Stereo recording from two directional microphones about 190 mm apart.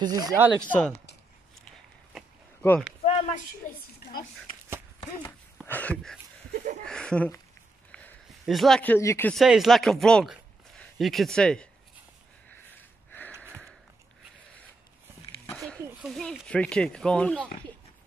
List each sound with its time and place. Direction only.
0.0 s speech: 20° right (ahead or behind)
0.6 s speech: 5° left (ahead or behind)
3.1 s a woman's voice: 35° left (ahead or behind)
5.2 s speech: 10° left (ahead or behind)
7.9 s a sound: 5° left (ahead or behind)
9.3 s speech: centre (ahead or behind)
12.4 s a sound: 10° left (ahead or behind)
15.5 s speech: centre (ahead or behind)